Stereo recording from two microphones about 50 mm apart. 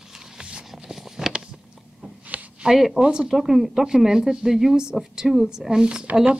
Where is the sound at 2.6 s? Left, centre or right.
Centre.